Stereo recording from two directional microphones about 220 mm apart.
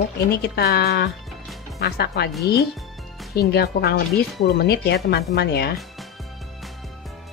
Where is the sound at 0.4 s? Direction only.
45° left (ahead or behind).